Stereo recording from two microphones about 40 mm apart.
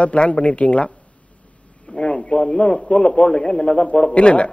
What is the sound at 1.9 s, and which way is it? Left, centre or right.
A man's voice, left.